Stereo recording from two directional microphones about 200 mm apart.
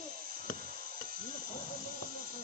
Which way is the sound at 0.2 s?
45° right (ahead or behind).